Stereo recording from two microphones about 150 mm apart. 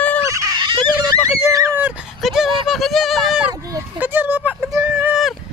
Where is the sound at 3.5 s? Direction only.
25° right (ahead or behind).